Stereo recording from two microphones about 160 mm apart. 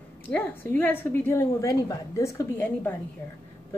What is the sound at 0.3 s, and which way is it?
A woman's voice, 10° left (ahead or behind).